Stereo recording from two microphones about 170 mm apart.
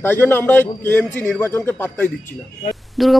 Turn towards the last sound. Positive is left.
turn(degrees=0)  # may be behind; listen again after turning